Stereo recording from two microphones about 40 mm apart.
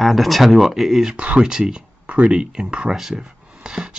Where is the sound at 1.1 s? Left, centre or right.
Right.